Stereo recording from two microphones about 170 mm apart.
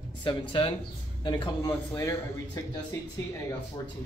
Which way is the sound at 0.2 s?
30° left (ahead or behind).